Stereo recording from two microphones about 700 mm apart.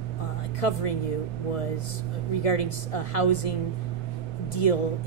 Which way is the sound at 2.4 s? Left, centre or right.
Left.